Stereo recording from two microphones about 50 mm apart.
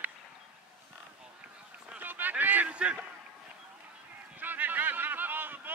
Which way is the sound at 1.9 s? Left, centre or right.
Right.